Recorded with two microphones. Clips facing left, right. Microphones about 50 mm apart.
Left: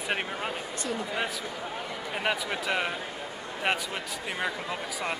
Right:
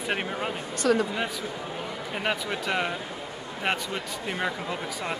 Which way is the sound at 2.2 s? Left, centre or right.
Centre.